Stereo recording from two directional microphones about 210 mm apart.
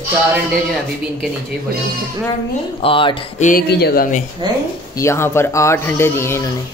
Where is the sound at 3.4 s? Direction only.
45° left (ahead or behind).